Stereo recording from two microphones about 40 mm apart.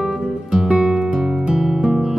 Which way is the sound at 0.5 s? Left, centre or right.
Centre.